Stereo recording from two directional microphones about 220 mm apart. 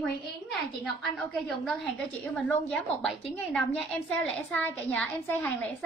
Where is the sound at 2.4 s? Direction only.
5° left (ahead or behind).